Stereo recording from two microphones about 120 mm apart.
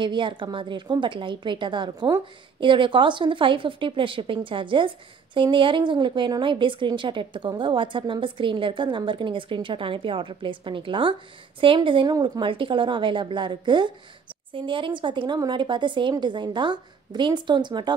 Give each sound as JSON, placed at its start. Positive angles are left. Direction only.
{"t": 0.0, "sound": "a woman's voice", "side_deg": -40}